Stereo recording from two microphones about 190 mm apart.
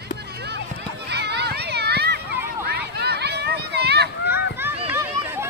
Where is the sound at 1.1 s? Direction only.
60° right (ahead or behind).